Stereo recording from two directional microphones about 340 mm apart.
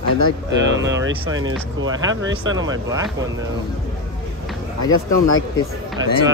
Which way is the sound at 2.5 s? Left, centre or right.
Centre.